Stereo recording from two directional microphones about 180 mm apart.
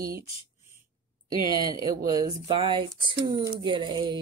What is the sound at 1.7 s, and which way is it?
Speech, 20° right (ahead or behind).